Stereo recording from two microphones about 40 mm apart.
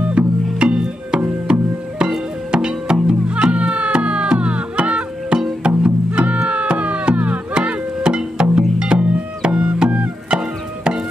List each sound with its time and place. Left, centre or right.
0.2 s music: right
10.3 s music: right